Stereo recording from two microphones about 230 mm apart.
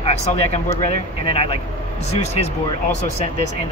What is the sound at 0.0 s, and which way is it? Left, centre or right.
Speech, left.